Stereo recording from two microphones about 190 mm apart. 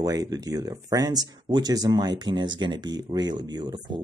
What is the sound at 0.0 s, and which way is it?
Speech, 20° right (ahead or behind).